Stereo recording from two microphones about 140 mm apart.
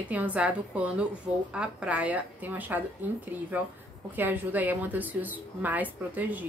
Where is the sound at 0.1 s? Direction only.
10° right (ahead or behind).